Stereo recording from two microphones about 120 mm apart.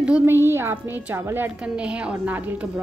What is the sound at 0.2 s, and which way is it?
A woman's voice, 20° right (ahead or behind).